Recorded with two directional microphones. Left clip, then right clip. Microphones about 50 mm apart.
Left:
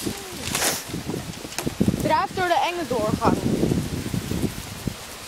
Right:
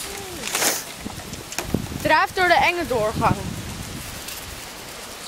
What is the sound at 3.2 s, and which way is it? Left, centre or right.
Speech, right.